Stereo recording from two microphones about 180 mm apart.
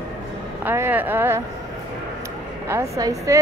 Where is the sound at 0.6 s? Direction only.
10° right (ahead or behind).